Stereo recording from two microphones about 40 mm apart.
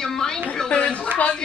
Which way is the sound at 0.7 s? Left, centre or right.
Left.